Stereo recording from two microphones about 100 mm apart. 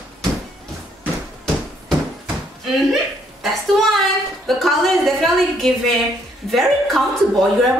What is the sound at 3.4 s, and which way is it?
Speech, centre (ahead or behind).